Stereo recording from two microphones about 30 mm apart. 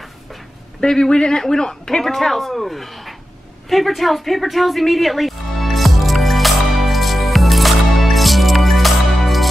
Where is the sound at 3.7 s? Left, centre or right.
Centre.